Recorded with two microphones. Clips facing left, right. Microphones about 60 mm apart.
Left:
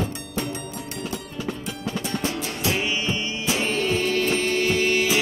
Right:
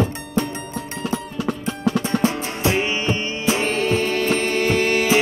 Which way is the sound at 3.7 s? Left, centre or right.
Right.